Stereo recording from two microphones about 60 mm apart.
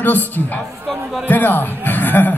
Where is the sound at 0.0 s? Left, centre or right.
Left.